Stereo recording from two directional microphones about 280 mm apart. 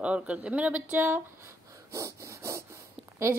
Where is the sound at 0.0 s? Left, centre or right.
Centre.